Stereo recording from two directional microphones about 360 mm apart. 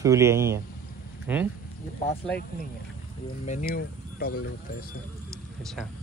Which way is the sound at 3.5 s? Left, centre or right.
Left.